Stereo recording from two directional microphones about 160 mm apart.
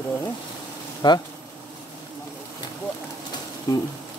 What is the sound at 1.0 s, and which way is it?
Speech, 30° left (ahead or behind).